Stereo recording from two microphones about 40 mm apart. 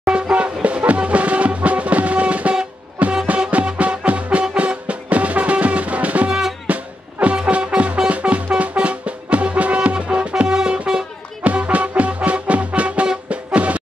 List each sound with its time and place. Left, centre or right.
0.1 s music: right
11.4 s music: right